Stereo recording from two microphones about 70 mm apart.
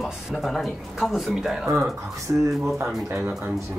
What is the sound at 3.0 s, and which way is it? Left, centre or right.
Speech, right.